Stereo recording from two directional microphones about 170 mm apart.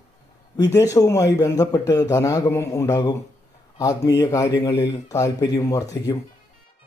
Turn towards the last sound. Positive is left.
turn(degrees=20)  # may be behind; listen again after turning